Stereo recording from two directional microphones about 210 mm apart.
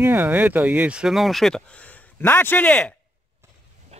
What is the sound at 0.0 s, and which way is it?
Speech, 10° right (ahead or behind).